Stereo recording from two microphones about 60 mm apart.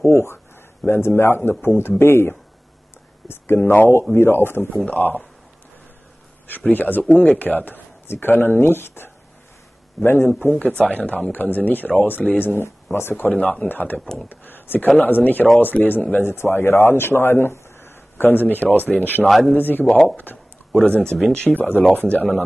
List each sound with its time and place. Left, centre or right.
0.0 s speech: left
4.6 s speech: left
6.7 s speech: left
10.8 s speech: left
13.9 s speech: centre
14.3 s a sound: left
15.0 s a man's voice: left
19.2 s a man's voice: centre
19.5 s speech: left
19.9 s a man's voice: centre
20.8 s speech: centre
21.5 s speech: left